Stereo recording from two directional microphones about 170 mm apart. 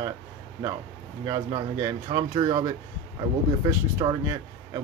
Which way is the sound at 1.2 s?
20° right (ahead or behind).